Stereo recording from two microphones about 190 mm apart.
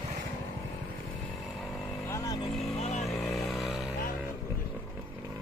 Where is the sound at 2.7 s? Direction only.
35° left (ahead or behind).